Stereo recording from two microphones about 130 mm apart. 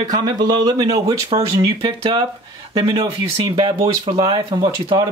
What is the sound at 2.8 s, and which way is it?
Speech, 40° right (ahead or behind).